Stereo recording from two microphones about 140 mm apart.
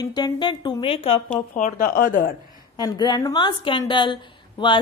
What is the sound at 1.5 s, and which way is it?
Speech, 80° left.